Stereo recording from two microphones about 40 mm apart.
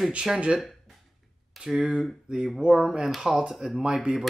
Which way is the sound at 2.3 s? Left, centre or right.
Right.